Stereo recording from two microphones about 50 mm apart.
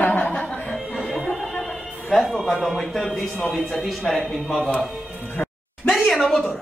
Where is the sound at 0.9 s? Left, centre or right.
Centre.